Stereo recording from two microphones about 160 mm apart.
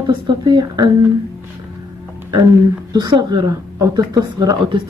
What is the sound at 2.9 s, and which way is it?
A woman's voice, 25° right (ahead or behind).